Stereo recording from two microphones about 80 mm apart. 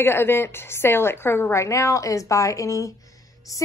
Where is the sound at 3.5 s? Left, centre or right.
Left.